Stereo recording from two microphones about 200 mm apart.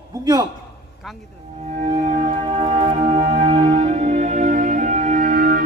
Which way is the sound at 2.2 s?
30° right (ahead or behind).